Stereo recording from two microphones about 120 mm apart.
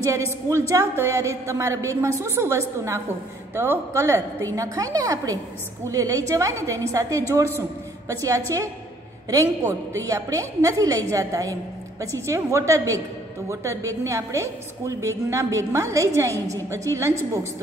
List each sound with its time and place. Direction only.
0.0 s a woman's voice: 25° right (ahead or behind)